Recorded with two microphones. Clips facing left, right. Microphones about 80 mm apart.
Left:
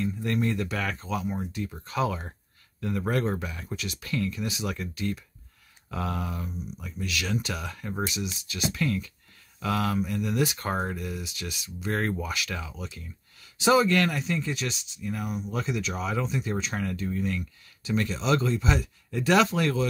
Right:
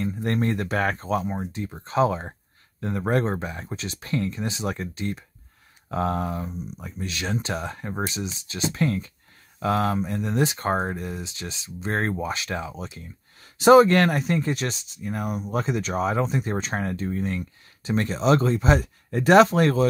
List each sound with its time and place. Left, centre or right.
0.0 s speech: right